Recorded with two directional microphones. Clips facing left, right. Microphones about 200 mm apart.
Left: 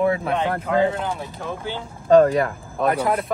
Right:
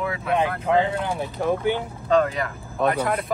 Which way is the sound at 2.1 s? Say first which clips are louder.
Left 7 dB; 45° left (ahead or behind).